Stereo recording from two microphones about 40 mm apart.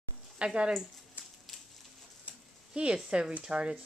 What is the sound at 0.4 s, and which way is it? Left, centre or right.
Speech, right.